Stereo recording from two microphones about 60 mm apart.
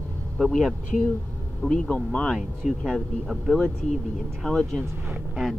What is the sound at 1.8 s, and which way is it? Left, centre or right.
Speech, left.